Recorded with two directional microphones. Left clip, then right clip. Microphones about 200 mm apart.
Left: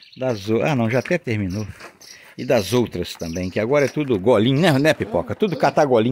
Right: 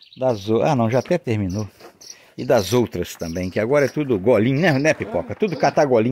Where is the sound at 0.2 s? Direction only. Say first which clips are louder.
Right 2 dB; 5° left (ahead or behind).